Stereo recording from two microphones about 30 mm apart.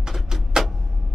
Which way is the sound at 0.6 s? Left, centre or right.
Centre.